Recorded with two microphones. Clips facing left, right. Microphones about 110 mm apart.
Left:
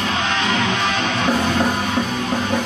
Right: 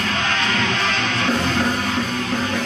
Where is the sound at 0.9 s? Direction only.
15° left (ahead or behind).